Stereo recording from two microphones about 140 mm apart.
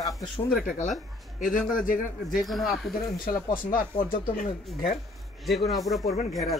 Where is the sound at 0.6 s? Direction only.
65° left (ahead or behind).